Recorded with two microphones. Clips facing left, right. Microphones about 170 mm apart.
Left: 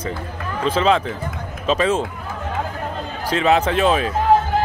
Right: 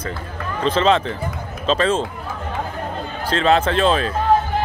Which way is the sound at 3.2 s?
15° left (ahead or behind).